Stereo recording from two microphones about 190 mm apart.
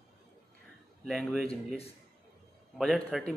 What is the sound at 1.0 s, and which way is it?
Speech, centre (ahead or behind).